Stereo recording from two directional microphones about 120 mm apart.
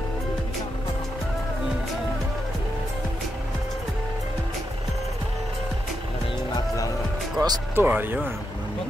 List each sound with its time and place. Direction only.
7.4 s music: 35° right (ahead or behind)
7.7 s speech: 15° right (ahead or behind)